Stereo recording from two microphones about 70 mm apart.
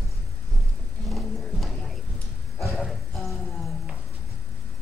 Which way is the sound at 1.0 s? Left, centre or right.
Centre.